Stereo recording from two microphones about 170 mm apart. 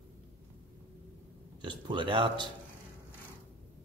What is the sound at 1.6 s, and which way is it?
Speech, 25° right (ahead or behind).